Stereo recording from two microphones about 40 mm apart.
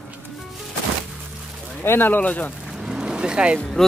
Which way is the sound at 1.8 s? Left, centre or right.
Left.